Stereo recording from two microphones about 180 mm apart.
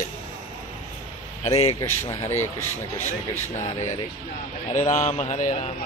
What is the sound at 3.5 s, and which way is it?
Speech, 40° left (ahead or behind).